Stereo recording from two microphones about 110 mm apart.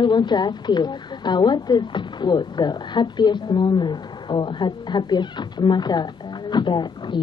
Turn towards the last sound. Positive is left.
turn(degrees=45)  # may be behind; listen again after turning